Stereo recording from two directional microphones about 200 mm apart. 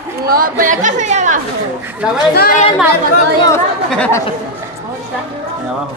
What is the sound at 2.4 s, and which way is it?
Speech, 45° left (ahead or behind).